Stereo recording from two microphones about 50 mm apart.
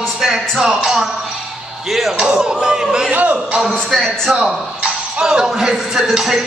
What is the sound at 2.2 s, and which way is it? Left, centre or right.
Speech, centre.